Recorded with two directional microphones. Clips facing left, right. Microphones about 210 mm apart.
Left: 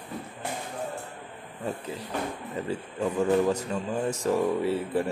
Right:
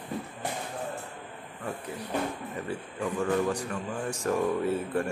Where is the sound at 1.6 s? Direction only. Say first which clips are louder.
Left 3 dB; 20° left (ahead or behind).